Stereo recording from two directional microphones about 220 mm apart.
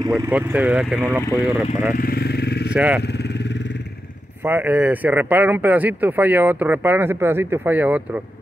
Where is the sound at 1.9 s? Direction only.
45° left (ahead or behind).